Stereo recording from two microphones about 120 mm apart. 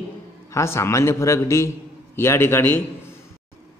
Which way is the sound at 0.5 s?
25° left (ahead or behind).